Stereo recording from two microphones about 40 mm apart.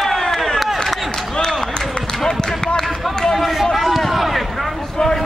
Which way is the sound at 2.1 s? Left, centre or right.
Centre.